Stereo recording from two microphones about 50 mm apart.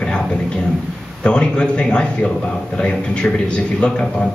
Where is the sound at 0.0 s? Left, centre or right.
Centre.